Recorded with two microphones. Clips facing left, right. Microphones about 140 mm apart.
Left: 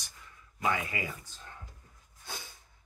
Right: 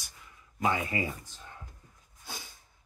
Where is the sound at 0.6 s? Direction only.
30° right (ahead or behind).